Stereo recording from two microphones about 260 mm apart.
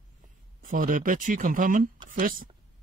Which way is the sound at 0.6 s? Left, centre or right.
Right.